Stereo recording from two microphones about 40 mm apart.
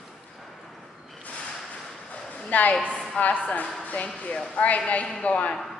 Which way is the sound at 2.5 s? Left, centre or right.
Left.